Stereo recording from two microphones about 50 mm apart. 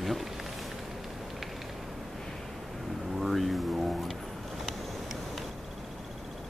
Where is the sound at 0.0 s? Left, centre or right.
Centre.